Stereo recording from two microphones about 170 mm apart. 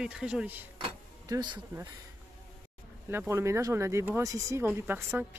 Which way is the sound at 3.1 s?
15° right (ahead or behind).